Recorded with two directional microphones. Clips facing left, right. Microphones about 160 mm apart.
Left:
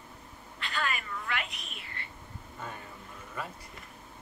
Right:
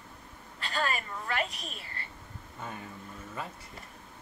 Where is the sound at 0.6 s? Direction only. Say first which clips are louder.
Right 2 dB; 40° right (ahead or behind).